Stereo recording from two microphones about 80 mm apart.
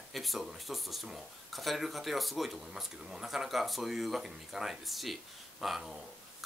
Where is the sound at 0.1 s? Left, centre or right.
Centre.